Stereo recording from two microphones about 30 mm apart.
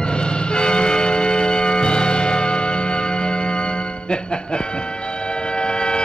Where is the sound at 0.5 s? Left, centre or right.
Left.